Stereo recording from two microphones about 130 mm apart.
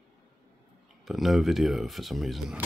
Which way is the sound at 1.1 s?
Centre (ahead or behind).